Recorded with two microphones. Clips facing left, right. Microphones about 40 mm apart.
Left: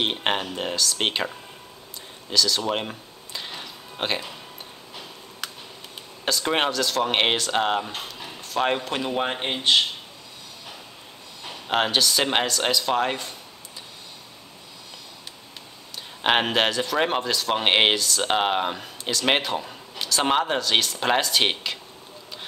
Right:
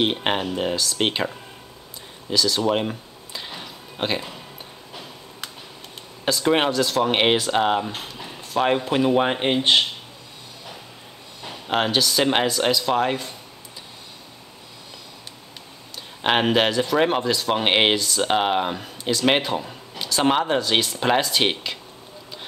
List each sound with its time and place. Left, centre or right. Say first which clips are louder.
0.0 s speech: right 3 dB; centre
2.2 s a sound: right 2 dB; centre
6.2 s speech: right 3 dB; centre
9.6 s speech: even; right
11.4 s speech: right 1 dB; centre
16.2 s speech: right 2 dB; centre